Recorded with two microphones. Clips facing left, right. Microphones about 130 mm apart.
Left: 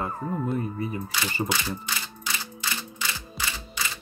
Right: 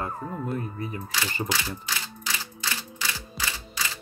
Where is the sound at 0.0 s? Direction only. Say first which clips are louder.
Left 3 dB; 5° left (ahead or behind).